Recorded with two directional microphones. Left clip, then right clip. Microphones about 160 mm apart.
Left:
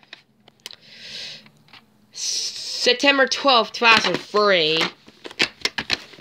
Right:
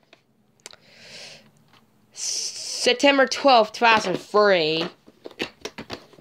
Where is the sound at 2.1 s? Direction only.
15° right (ahead or behind).